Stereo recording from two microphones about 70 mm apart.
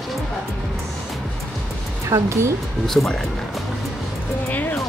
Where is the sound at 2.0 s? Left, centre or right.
Right.